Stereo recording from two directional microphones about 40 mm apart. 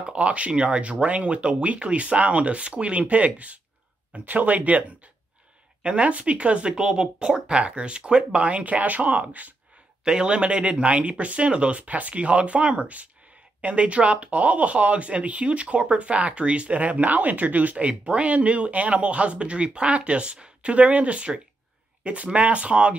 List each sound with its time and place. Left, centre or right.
0.0 s speech: right
5.8 s speech: right
6.8 s speech: centre; by 9.5 s right
10.0 s speech: right
17.8 s speech: right